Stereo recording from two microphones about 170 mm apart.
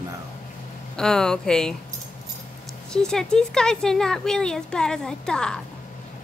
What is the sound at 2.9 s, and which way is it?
Speech, 5° left (ahead or behind).